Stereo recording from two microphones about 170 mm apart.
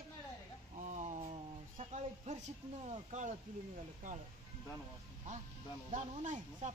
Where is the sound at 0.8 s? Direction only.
45° right (ahead or behind).